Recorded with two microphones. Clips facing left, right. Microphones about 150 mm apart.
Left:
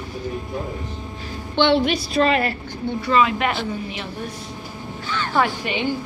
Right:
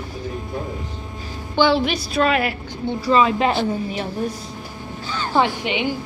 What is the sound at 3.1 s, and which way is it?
Speech, 30° right (ahead or behind).